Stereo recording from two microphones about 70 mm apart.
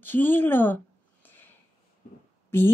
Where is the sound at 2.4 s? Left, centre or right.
Left.